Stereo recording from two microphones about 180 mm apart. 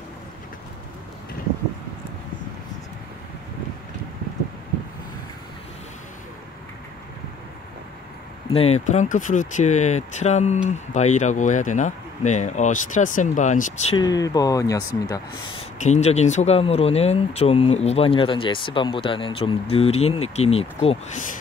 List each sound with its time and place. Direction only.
8.5 s speech: 35° left (ahead or behind)
13.9 s speech: 20° left (ahead or behind)
15.8 s speech: 40° left (ahead or behind)